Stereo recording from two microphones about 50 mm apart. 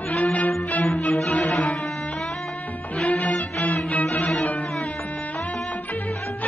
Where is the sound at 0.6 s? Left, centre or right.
Left.